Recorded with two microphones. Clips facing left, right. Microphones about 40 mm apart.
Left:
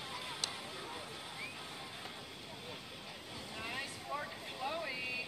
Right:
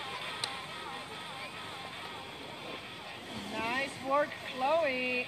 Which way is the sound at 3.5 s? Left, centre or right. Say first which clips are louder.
Right 9 dB; right.